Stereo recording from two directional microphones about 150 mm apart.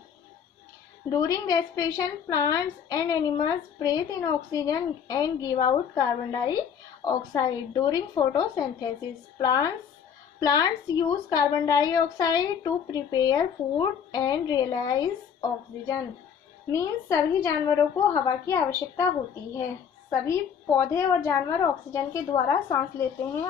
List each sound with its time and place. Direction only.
1.0 s a woman's voice: 20° left (ahead or behind)
16.7 s a woman's voice: 20° left (ahead or behind)